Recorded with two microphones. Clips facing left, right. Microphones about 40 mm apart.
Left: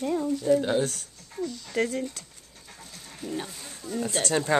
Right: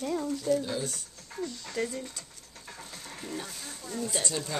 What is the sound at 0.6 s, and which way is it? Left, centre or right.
Speech, left.